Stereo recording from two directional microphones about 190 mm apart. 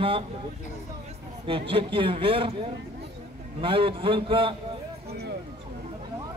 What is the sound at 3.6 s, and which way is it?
Speech, 25° right (ahead or behind).